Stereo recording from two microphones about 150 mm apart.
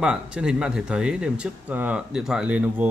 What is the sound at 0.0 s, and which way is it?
A man's voice, 5° right (ahead or behind).